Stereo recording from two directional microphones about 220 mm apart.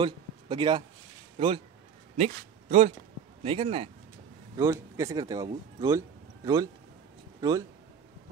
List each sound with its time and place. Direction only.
0.0 s a man's voice: 20° right (ahead or behind)
2.1 s speech: 30° right (ahead or behind)
4.6 s a man's voice: 15° right (ahead or behind)